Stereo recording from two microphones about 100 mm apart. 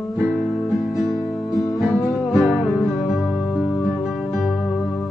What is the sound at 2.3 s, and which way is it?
Music, 5° right (ahead or behind).